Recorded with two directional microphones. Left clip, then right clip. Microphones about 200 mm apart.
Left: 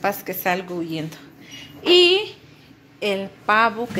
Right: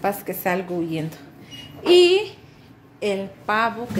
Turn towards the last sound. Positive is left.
turn(degrees=20)  # may be behind; listen again after turning